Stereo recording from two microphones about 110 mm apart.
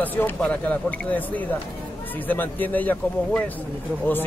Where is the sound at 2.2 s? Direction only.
15° left (ahead or behind).